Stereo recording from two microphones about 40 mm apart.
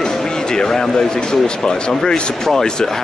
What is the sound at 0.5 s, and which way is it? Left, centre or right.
Speech, centre.